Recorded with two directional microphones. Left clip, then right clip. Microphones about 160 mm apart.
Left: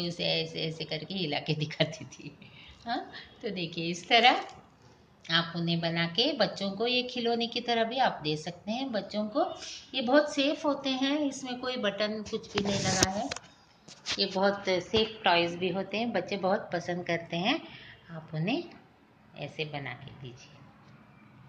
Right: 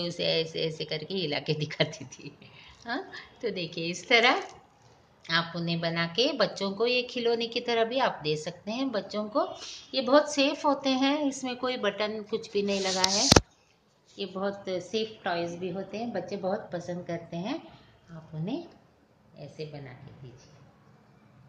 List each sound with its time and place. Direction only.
0.0 s a woman's voice: 45° right (ahead or behind)
14.3 s a woman's voice: 20° right (ahead or behind); by 19.9 s 5° right (ahead or behind)